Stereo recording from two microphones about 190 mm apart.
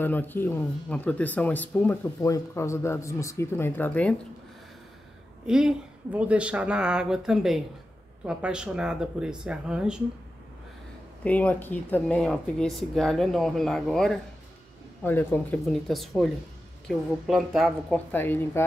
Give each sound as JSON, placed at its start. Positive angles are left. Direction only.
{"t": 0.0, "sound": "speech", "side_deg": 10}
{"t": 5.5, "sound": "a woman's voice", "side_deg": -5}
{"t": 11.2, "sound": "a woman's voice", "side_deg": 5}